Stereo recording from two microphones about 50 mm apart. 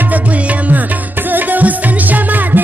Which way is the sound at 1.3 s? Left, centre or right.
Right.